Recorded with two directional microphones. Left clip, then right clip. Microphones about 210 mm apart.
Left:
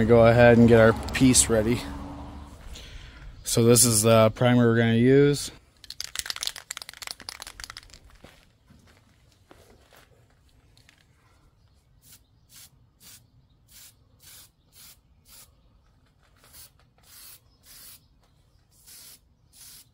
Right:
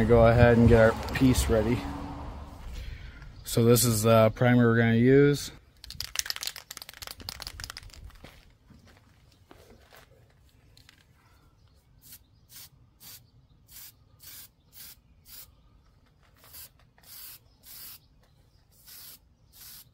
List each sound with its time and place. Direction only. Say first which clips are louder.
0.0 s speech: left 4 dB; 55° left (ahead or behind)
2.7 s speech: left 3 dB; 45° left (ahead or behind)
5.8 s computer keyboard: right 1 dB; 10° left (ahead or behind)
6.3 s a sound: left 4 dB; 25° left (ahead or behind)
8.2 s walk: even; centre (ahead or behind)
9.5 s walk: left 1 dB; 10° left (ahead or behind)
10.7 s biting: right 1 dB; 5° left (ahead or behind)
12.0 s rub: right 1 dB; centre (ahead or behind)
16.5 s spray: right 1 dB; 10° left (ahead or behind)